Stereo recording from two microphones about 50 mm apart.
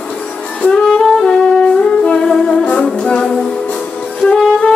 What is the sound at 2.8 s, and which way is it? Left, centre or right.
Music, centre.